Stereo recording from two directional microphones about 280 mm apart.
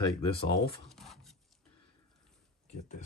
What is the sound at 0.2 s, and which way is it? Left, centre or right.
Speech, centre.